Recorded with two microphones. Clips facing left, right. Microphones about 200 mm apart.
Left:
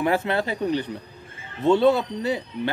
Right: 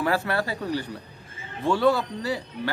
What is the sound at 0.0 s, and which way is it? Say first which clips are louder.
Speech: left 2 dB; 20° left (ahead or behind).